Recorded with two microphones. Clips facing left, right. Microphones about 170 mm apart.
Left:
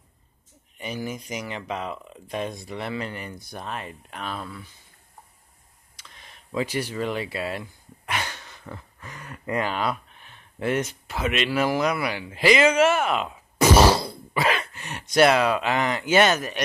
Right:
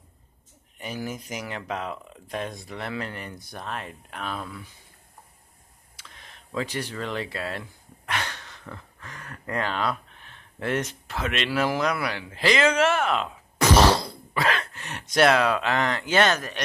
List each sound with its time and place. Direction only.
0.7 s speech: centre (ahead or behind)
5.9 s speech: centre (ahead or behind)